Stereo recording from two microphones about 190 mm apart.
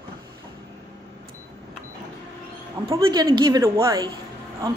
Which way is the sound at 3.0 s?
25° right (ahead or behind).